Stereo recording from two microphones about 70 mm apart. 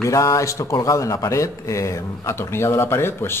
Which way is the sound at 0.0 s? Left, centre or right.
Left.